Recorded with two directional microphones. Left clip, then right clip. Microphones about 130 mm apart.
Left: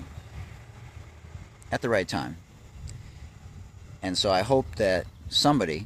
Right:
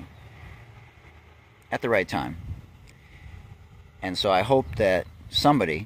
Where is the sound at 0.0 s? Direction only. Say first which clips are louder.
Even; 35° right (ahead or behind).